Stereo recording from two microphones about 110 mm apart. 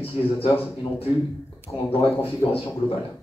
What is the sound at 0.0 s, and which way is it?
Speech, 60° left (ahead or behind).